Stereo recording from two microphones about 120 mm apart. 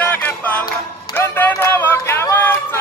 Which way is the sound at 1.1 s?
15° left (ahead or behind).